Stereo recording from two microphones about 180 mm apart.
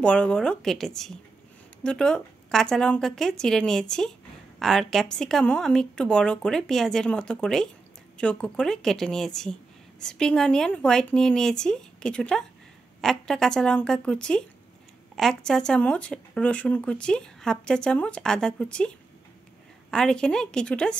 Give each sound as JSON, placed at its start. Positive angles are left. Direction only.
{"t": 0.0, "sound": "a woman's voice", "side_deg": 5}
{"t": 19.9, "sound": "a woman's voice", "side_deg": 5}